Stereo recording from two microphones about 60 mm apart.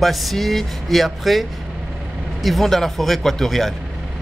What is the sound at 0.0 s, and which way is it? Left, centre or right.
Speech, centre.